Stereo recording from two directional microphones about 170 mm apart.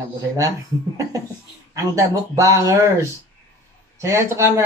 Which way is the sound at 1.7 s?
20° right (ahead or behind).